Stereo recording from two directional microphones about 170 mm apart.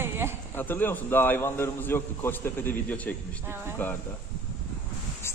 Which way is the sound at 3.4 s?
15° right (ahead or behind).